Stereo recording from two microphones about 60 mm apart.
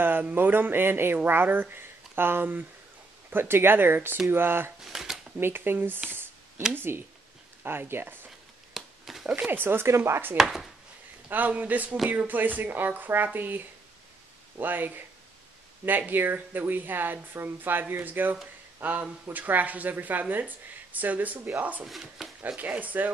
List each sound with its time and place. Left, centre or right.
0.0 s a woman's voice: right
4.8 s speech: centre
5.4 s a woman's voice: right
8.7 s a sound: centre
9.3 s a woman's voice: right
10.3 s speech: centre
11.2 s a woman's voice: right
21.8 s speech: centre
22.6 s speech: right